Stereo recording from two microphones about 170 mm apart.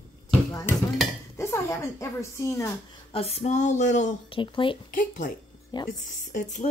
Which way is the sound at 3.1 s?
35° left (ahead or behind).